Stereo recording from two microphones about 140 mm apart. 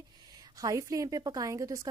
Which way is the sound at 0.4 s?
25° right (ahead or behind).